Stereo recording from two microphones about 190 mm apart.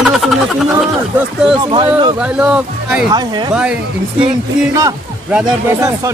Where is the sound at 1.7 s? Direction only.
25° right (ahead or behind).